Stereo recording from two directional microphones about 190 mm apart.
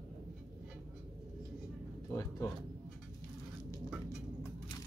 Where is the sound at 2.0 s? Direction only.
15° left (ahead or behind).